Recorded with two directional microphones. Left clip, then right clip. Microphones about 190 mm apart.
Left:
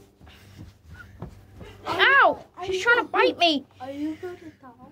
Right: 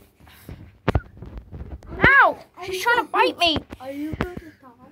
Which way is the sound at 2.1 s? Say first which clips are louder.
Right 3 dB; 20° left (ahead or behind).